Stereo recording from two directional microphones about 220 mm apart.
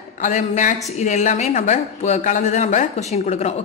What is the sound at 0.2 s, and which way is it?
A woman's voice, 35° left (ahead or behind).